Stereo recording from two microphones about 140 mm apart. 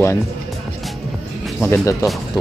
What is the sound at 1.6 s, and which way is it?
Speech, 20° left (ahead or behind).